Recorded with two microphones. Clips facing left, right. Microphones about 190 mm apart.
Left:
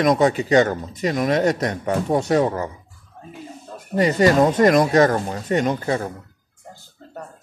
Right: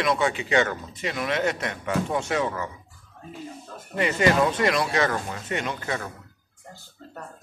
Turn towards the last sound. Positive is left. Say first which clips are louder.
# left 9 dB
turn(degrees=35)  # may be behind; listen again after turning